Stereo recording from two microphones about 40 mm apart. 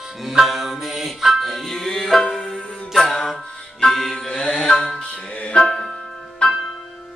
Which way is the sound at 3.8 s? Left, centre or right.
Centre.